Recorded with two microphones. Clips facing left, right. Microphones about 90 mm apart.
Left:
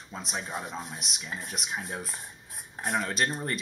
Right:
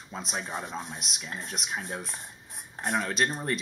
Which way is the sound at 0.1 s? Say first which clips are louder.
Right 1 dB; centre (ahead or behind).